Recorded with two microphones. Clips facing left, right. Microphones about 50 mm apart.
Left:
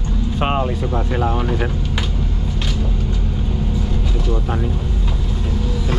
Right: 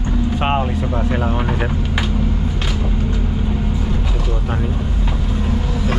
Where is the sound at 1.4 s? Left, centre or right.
Right.